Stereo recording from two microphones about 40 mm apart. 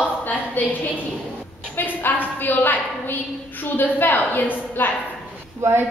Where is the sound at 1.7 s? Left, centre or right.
Left.